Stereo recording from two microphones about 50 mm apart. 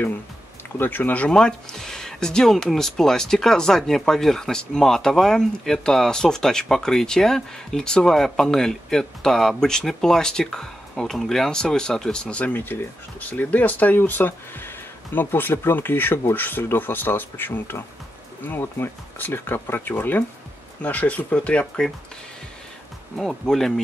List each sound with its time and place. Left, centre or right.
0.7 s speech: left
1.3 s speech: centre
13.2 s speech: left
23.1 s speech: centre